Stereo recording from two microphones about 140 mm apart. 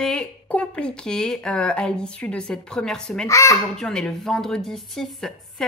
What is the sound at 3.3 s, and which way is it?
Speech, 20° left (ahead or behind).